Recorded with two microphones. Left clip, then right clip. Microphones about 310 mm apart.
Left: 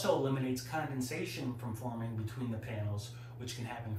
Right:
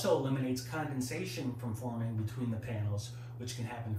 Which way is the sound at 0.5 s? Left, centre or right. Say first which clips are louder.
Even; centre.